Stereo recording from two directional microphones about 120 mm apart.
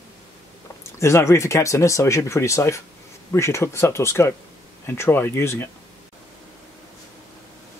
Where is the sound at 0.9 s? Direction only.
25° left (ahead or behind).